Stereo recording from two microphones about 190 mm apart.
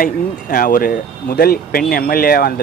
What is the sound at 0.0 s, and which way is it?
Speech, 45° left (ahead or behind).